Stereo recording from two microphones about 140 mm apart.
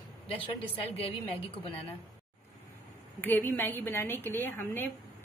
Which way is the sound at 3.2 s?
15° left (ahead or behind).